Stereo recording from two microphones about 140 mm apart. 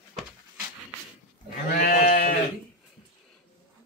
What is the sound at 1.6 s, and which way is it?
Sheep, 80° left.